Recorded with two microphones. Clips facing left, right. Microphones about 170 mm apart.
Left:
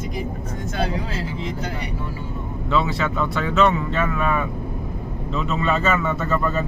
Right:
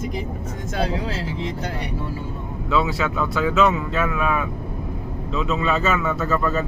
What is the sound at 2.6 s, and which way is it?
Speech, 5° right (ahead or behind).